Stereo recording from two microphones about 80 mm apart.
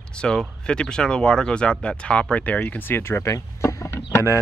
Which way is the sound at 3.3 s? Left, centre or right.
Left.